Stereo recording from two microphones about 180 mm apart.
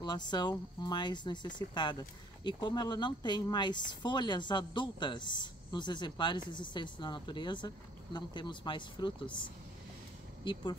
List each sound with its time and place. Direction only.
0.0 s speech: 25° left (ahead or behind)